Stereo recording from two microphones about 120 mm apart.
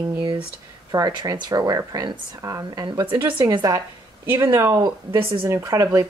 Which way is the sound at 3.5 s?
30° right (ahead or behind).